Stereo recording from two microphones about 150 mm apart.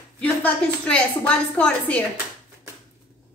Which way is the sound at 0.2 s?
10° left (ahead or behind).